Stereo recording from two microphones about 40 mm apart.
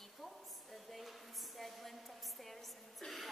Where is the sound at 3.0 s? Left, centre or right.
Centre.